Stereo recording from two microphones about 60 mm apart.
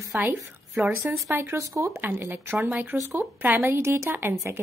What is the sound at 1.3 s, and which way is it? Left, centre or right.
Speech, right.